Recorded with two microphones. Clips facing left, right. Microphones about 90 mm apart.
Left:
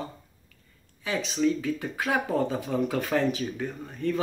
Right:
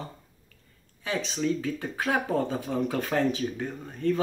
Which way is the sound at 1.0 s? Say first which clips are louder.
Left 3 dB; 30° right (ahead or behind).